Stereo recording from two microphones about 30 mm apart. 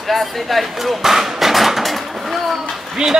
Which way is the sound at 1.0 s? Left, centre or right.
Centre.